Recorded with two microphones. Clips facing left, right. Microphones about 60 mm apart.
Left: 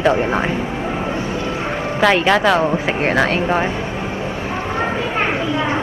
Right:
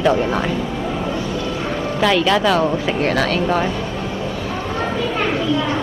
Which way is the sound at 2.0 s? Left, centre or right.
Left.